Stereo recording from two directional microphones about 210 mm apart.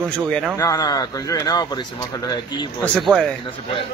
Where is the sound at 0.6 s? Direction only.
15° left (ahead or behind).